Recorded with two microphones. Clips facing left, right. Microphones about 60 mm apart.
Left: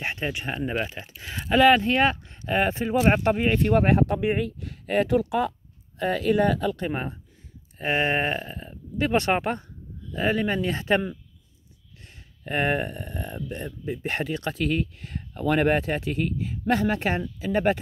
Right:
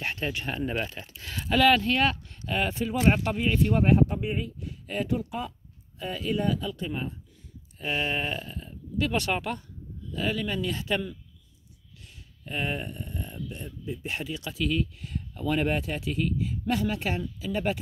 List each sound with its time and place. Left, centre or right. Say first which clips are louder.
0.0 s speech: left 2 dB; centre; by 5.5 s left
5.9 s speech: left 8 dB; left
7.7 s speech: left 5 dB; left
12.0 s speech: left 4 dB; left